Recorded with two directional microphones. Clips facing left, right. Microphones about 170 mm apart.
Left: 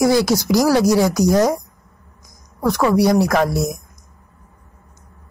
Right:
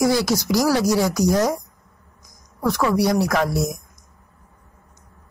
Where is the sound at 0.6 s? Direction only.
45° left (ahead or behind).